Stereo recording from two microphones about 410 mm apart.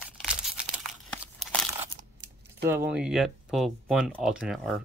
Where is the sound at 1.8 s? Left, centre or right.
Right.